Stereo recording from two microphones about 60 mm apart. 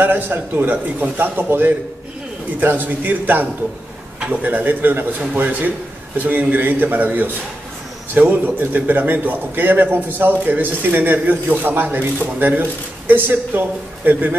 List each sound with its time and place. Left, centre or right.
0.0 s a man's voice: right